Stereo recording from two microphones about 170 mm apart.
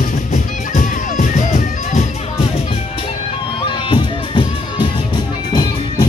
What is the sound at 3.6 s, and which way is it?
Music, 30° left (ahead or behind).